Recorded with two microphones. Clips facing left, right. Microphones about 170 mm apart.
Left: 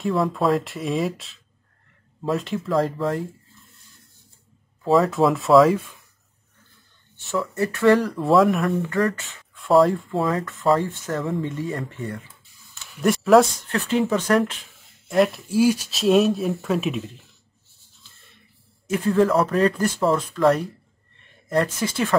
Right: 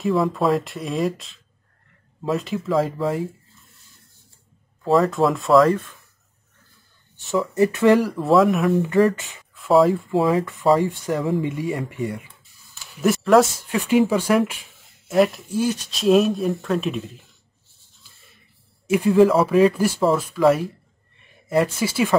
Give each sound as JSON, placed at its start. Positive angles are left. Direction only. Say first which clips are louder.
{"t": 0.0, "sound": "speech", "louder": "right 1 dB", "side_deg": 0}
{"t": 4.8, "sound": "speech", "louder": "even", "side_deg": 0}
{"t": 7.2, "sound": "speech", "louder": "right 5 dB", "side_deg": -15}
{"t": 8.1, "sound": "speech", "louder": "right 1 dB", "side_deg": 0}
{"t": 9.0, "sound": "speech", "louder": "right 4 dB", "side_deg": -15}
{"t": 9.6, "sound": "speech", "louder": "right 1 dB", "side_deg": 0}
{"t": 10.4, "sound": "speech", "louder": "right 2 dB", "side_deg": -15}
{"t": 13.7, "sound": "speech", "louder": "right 3 dB", "side_deg": -10}
{"t": 18.9, "sound": "speech", "louder": "right 4 dB", "side_deg": -15}